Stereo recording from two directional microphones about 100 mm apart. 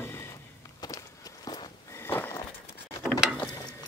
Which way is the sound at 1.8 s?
25° left (ahead or behind).